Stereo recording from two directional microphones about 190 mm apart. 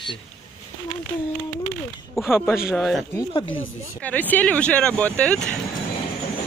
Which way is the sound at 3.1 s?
20° left (ahead or behind).